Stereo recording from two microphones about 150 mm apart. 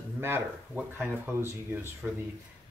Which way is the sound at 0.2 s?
15° right (ahead or behind).